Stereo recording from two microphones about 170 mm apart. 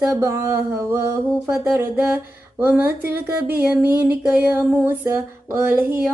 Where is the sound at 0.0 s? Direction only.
15° right (ahead or behind).